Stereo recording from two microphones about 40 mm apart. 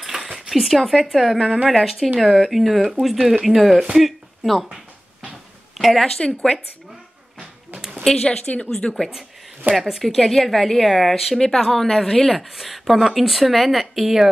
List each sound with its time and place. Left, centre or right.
0.0 s a woman's voice: centre
5.8 s a sound: centre
6.1 s speech: left
8.0 s speech: centre
8.6 s a woman's voice: centre
9.8 s a woman's voice: centre
11.3 s a woman's voice: centre
11.6 s a woman's voice: centre